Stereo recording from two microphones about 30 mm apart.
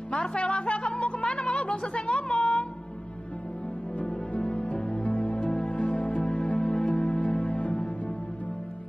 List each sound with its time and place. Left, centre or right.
0.1 s a woman's voice: left
1.2 s music: left
4.3 s music: left